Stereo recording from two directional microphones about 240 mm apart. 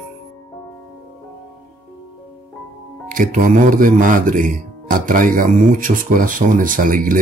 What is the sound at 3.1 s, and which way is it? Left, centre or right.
Speech, right.